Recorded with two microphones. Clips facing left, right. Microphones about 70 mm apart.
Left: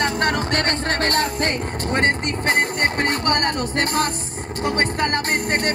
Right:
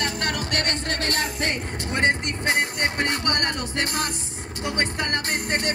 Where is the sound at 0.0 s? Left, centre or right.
Left.